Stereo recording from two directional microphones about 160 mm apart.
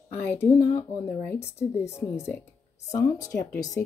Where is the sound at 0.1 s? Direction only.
10° left (ahead or behind).